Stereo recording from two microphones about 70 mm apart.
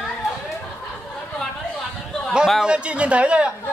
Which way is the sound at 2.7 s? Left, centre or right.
Centre.